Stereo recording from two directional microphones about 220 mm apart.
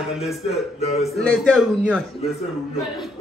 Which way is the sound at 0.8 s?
30° left (ahead or behind).